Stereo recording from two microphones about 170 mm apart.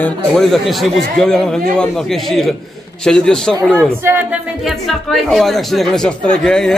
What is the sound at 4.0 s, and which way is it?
Speech, 10° right (ahead or behind).